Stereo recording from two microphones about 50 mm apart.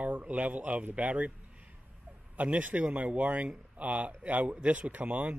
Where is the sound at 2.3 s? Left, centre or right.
Right.